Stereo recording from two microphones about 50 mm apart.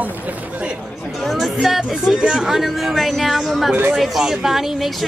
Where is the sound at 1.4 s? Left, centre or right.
Centre.